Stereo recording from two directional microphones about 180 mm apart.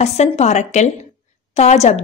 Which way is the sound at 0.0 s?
40° left (ahead or behind).